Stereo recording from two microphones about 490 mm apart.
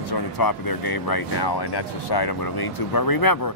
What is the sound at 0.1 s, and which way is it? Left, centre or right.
Speech, left.